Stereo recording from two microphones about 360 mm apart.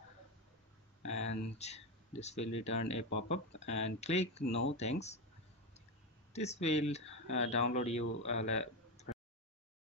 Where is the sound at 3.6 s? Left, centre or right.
Centre.